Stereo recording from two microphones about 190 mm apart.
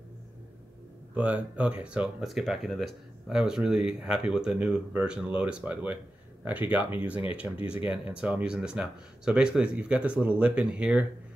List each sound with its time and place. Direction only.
1.1 s speech: 10° right (ahead or behind)